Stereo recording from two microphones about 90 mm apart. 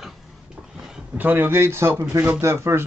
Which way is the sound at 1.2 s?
25° right (ahead or behind).